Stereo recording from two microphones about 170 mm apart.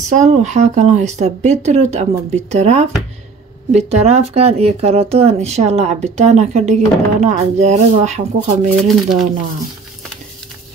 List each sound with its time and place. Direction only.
0.1 s speech: 45° right (ahead or behind)
8.7 s speech: centre (ahead or behind)